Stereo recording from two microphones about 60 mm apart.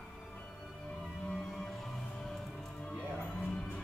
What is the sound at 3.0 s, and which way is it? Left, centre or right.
Music, left.